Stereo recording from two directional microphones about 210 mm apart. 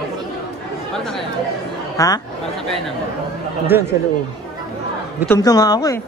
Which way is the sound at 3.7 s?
10° right (ahead or behind).